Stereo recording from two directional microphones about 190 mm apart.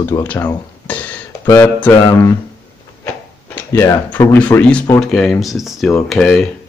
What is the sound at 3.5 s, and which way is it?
Speech, 10° left (ahead or behind).